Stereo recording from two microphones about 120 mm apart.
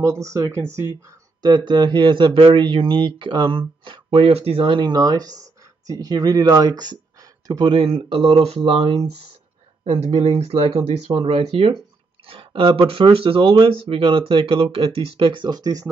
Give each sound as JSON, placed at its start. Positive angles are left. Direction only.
{"t": 0.0, "sound": "speech", "side_deg": -25}
{"t": 1.1, "sound": "speech", "side_deg": -35}
{"t": 7.7, "sound": "speech", "side_deg": -50}